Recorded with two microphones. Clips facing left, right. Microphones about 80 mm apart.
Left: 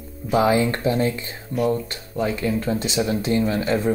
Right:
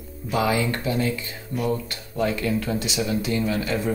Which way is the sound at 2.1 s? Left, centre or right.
Left.